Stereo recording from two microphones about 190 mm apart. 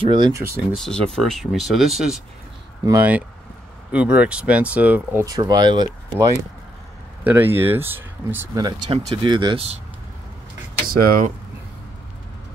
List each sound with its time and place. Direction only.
0.0 s speech: 25° right (ahead or behind)
0.7 s speech: 5° left (ahead or behind)
2.8 s speech: 15° right (ahead or behind)
7.2 s speech: 10° right (ahead or behind)
8.9 s speech: 25° right (ahead or behind)
10.9 s speech: 50° right (ahead or behind)